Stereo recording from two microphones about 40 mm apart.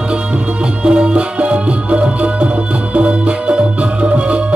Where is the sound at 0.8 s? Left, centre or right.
Right.